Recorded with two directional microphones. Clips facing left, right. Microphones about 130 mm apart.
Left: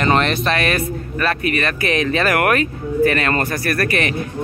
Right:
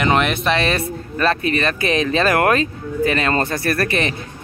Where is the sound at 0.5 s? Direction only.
25° right (ahead or behind).